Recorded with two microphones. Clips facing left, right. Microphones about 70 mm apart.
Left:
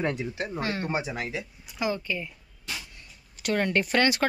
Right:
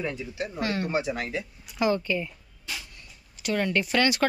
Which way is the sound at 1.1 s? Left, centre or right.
Centre.